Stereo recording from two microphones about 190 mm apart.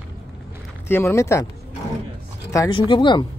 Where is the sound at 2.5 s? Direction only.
20° left (ahead or behind).